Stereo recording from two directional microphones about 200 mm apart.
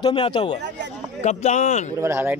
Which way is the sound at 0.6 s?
60° right (ahead or behind).